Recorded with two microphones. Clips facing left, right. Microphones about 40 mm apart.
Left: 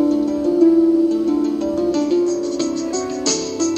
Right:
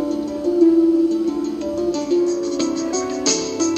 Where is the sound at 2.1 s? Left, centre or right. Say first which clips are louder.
Left 1 dB; centre.